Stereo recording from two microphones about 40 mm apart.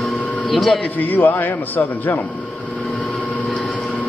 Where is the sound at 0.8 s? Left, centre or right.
Left.